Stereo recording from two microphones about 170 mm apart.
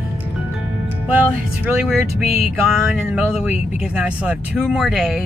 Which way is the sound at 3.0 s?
5° right (ahead or behind).